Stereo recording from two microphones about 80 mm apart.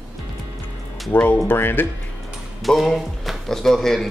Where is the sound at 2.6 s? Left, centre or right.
Centre.